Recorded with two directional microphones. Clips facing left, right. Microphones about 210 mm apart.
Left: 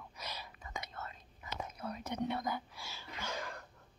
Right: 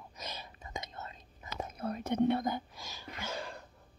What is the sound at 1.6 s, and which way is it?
Speech, 50° right (ahead or behind).